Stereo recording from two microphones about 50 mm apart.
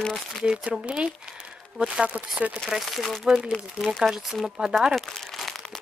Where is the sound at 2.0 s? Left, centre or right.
Right.